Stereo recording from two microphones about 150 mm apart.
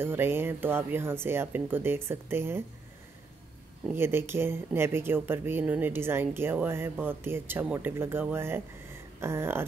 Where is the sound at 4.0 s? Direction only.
15° right (ahead or behind).